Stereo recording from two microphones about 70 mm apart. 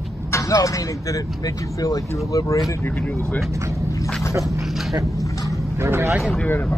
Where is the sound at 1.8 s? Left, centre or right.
Left.